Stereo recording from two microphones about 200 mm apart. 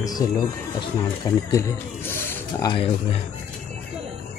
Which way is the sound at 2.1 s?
10° left (ahead or behind).